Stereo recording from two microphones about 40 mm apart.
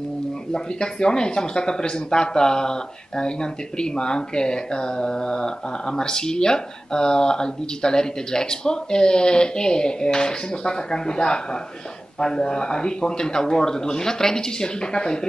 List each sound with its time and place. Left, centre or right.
0.5 s speech: centre